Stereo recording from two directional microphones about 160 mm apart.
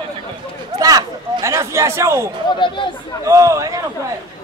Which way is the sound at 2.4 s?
30° left (ahead or behind).